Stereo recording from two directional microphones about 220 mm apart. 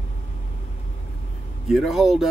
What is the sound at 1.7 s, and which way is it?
Speech, centre (ahead or behind).